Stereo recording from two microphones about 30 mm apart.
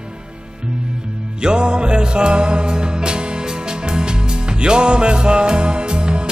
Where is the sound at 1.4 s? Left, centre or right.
Right.